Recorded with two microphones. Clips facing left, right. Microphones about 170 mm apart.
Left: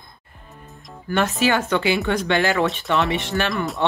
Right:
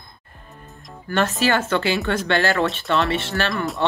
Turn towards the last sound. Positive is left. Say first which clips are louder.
# even
turn(degrees=0)  # may be behind; listen again after turning